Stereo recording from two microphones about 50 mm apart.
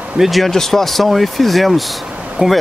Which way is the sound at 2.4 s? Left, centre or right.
Centre.